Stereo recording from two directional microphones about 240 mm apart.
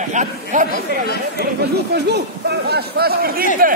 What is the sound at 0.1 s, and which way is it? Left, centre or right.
Speech, right.